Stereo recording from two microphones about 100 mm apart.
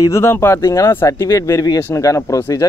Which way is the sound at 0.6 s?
35° left (ahead or behind).